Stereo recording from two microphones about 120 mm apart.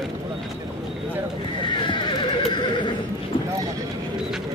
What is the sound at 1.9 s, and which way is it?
Horse, 40° left (ahead or behind).